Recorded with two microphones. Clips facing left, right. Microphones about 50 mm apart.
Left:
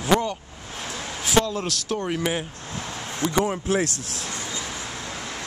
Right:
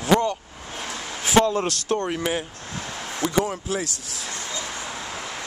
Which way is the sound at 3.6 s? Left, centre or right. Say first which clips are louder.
Left 4 dB; left.